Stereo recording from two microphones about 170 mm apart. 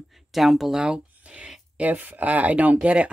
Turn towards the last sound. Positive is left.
turn(degrees=-10)  # may be behind; listen again after turning